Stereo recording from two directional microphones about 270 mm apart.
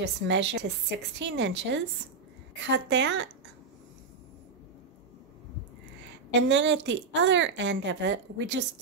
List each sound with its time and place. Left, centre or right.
0.0 s a woman's voice: right
6.5 s a woman's voice: right